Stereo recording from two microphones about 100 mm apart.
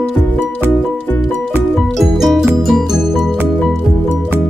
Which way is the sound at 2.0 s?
5° right (ahead or behind).